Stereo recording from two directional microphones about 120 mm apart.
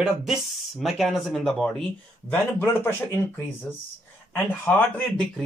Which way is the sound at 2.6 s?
20° left (ahead or behind).